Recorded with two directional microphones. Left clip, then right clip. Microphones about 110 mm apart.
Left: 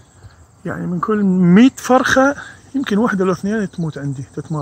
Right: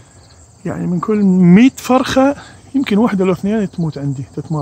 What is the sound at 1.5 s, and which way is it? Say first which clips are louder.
Speech: left 1 dB; 5° right (ahead or behind).